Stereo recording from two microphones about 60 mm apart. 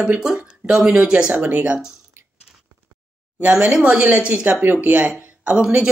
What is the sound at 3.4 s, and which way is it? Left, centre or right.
Speech, right.